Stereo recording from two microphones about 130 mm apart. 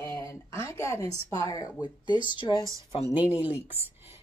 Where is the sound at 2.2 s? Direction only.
35° left (ahead or behind).